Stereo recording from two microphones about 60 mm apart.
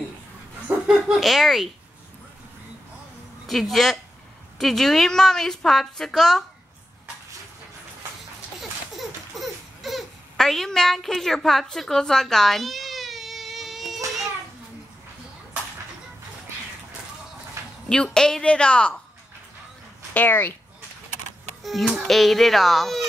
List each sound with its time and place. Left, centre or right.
0.8 s speech: centre
3.4 s a woman's voice: centre
8.5 s a sound: centre
17.8 s a woman's voice: centre
20.2 s speech: left
21.6 s speech: centre